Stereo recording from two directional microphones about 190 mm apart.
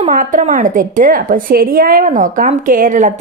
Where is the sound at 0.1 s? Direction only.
45° right (ahead or behind).